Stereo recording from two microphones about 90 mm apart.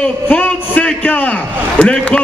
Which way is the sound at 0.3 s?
15° left (ahead or behind).